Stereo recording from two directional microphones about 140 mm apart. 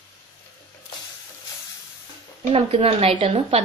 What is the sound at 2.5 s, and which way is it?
A woman's voice, 45° right (ahead or behind).